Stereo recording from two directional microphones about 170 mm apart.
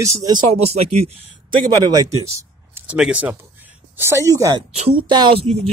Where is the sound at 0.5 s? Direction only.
35° right (ahead or behind).